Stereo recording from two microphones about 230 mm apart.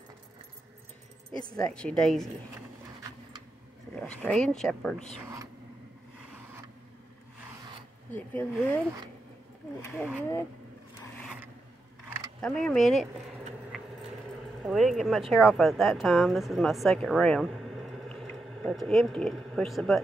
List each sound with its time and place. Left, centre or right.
1.4 s speech: centre
1.7 s speech: centre
3.9 s speech: centre
5.2 s a sound: centre
8.1 s speech: centre
9.9 s speech: centre
12.4 s speech: centre
14.6 s speech: centre